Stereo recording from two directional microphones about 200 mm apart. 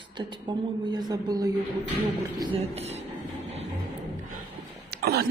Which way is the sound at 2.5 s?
30° right (ahead or behind).